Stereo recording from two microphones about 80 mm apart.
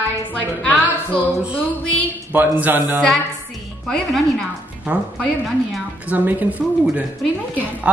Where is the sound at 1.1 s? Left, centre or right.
Left.